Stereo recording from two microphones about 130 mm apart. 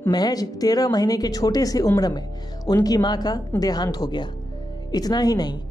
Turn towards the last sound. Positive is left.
turn(degrees=30)  # may be behind; listen again after turning